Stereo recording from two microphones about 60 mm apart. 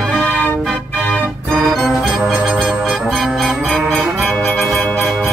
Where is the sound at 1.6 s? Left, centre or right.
Centre.